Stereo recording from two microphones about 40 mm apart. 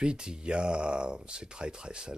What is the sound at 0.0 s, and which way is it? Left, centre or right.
Speech, right.